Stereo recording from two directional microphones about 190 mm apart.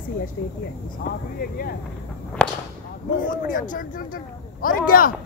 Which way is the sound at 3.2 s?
45° left (ahead or behind).